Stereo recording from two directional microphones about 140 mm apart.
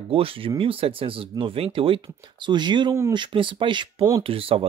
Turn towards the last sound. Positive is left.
turn(degrees=-40)  # may be behind; listen again after turning